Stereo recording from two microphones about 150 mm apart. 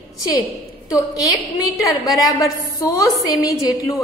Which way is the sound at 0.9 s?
25° left (ahead or behind).